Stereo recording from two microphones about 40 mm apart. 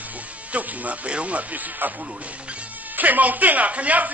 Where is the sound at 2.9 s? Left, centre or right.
Right.